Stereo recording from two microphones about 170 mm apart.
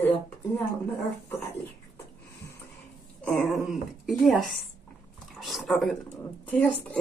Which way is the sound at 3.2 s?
Centre (ahead or behind).